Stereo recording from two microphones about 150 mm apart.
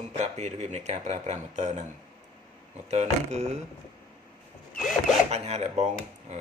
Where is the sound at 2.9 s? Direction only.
50° right (ahead or behind).